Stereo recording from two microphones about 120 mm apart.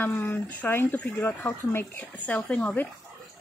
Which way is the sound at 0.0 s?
15° left (ahead or behind).